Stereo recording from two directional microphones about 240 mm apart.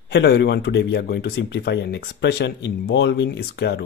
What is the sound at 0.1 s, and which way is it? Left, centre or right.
Speech, left.